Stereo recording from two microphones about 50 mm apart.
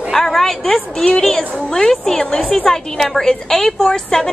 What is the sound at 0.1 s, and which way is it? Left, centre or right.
A woman's voice, centre.